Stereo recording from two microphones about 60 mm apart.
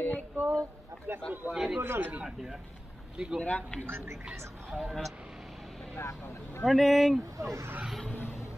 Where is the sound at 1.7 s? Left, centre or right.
Right.